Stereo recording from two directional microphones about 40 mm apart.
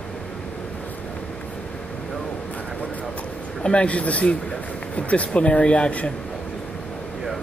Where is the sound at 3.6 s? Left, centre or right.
Left.